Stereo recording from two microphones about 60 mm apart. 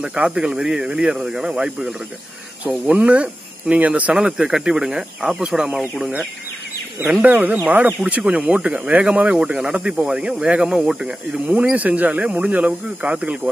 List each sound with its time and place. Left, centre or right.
0.0 s speech: centre
4.3 s speech: centre
7.2 s speech: right; by 11.1 s centre
11.3 s speech: right